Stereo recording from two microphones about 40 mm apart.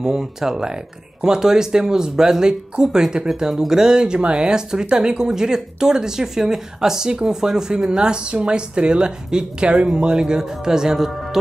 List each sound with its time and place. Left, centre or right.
0.2 s speech: centre